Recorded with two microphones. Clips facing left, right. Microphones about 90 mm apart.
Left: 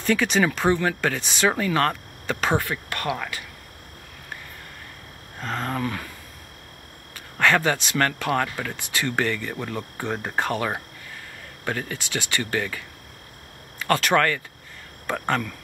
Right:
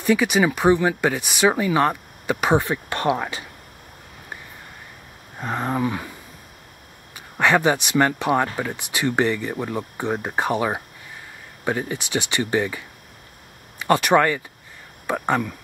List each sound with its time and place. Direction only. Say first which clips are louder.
0.0 s speech: right 3 dB; 15° right (ahead or behind)
5.4 s speech: right 4 dB; 15° right (ahead or behind)
7.2 s speech: right 2 dB; 15° right (ahead or behind)